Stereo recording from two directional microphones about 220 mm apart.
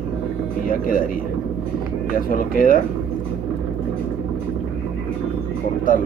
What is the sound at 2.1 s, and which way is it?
Speech, 40° left (ahead or behind).